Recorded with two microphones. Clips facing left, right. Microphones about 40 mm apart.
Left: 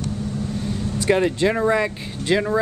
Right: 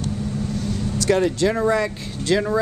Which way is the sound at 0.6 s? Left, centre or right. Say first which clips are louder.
Right 1 dB; left.